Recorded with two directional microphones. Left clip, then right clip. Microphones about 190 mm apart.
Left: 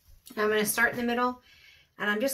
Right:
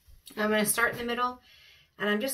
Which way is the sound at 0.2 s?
35° left (ahead or behind).